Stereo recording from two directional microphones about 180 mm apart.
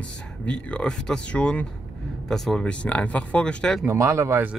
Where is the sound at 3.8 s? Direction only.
15° right (ahead or behind).